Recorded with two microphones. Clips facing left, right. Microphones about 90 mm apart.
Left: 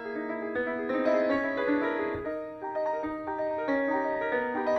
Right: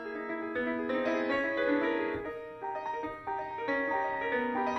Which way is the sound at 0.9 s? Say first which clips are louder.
Left 7 dB; 15° left (ahead or behind).